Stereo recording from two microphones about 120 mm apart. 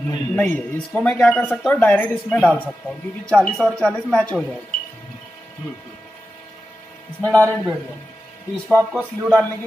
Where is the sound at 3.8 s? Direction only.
5° left (ahead or behind).